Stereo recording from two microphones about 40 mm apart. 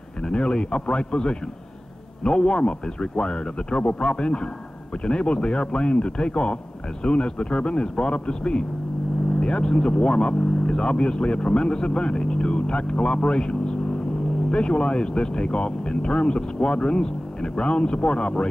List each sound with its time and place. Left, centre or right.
0.2 s speech: left